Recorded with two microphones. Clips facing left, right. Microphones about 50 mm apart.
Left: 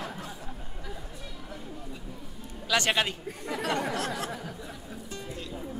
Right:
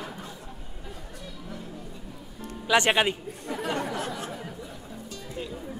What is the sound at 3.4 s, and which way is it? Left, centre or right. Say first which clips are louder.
Speech: even; left.